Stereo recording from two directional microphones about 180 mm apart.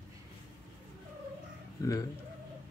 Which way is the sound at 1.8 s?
20° left (ahead or behind).